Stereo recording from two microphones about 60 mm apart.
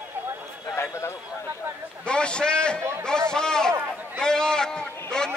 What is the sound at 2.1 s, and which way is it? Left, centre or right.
A man's voice, centre.